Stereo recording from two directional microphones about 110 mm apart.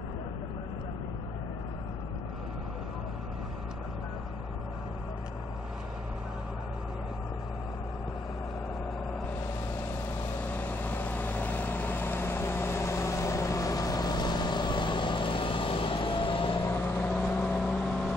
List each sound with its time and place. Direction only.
10.3 s vehicle: 15° left (ahead or behind); by 16.6 s 50° left (ahead or behind)
16.6 s vehicle: 20° left (ahead or behind)